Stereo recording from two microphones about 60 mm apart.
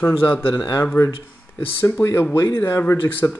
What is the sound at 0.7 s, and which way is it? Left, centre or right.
Speech, left.